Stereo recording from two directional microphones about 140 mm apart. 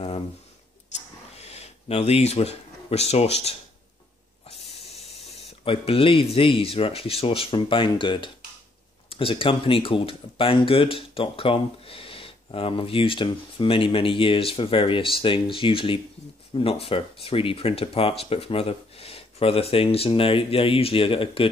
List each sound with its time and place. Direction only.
1.4 s speech: 50° left (ahead or behind)
4.9 s speech: 45° left (ahead or behind)